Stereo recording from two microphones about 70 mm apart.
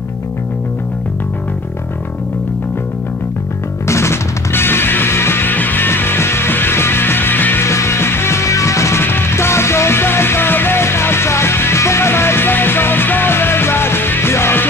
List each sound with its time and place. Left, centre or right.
3.8 s music: left
7.6 s music: left